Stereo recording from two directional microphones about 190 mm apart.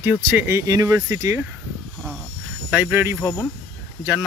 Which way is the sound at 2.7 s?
10° right (ahead or behind).